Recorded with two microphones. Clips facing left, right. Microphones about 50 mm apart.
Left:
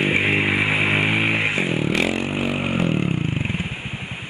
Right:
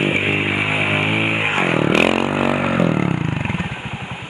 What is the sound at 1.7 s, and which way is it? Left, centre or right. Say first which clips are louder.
Vehicle: right 6 dB; right.